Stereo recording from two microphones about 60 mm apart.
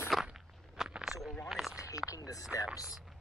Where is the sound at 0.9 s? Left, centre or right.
Centre.